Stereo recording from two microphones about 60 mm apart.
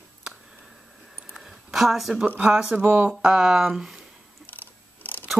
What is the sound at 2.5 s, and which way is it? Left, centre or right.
Speech, centre.